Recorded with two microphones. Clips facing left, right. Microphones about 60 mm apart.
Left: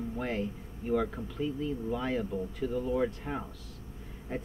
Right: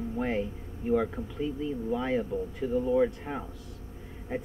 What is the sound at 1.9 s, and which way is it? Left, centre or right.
Speech, centre.